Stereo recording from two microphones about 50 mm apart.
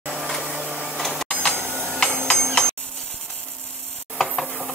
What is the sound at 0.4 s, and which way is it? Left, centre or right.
Printer, centre.